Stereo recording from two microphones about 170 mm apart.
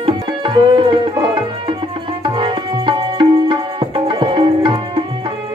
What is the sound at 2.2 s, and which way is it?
Music, 30° right (ahead or behind).